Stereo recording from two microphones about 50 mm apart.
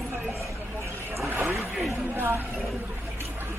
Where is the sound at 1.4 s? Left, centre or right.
Right.